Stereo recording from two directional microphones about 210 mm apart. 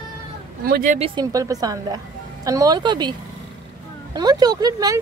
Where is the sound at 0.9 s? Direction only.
25° right (ahead or behind).